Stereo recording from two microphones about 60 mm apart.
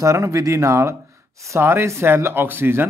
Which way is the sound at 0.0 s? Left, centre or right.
Right.